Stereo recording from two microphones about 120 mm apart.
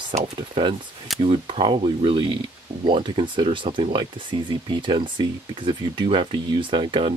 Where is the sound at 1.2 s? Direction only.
45° right (ahead or behind).